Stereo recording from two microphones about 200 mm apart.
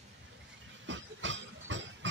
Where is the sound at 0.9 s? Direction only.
65° right (ahead or behind).